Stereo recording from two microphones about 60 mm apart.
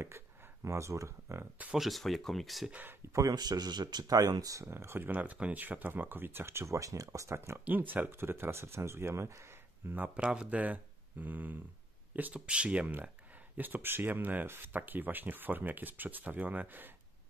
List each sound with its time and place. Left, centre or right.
0.2 s speech: right
0.7 s speech: right
1.8 s speech: centre
2.7 s speech: right
3.1 s speech: right
4.6 s speech: right
7.6 s speech: right
9.9 s speech: right
10.2 s speech: centre
12.4 s speech: centre